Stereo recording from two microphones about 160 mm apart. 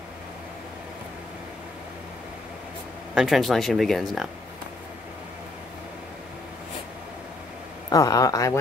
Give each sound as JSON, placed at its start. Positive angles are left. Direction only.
{"t": 3.2, "sound": "speech", "side_deg": 0}
{"t": 7.9, "sound": "speech", "side_deg": 20}